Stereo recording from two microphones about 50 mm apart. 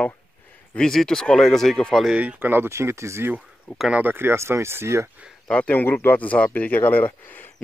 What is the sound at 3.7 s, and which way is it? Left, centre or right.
Speech, centre.